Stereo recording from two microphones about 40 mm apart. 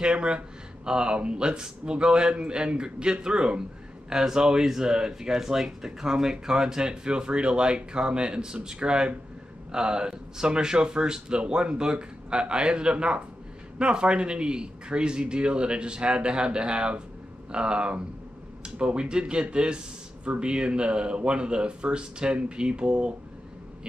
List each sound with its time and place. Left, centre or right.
0.0 s speech: right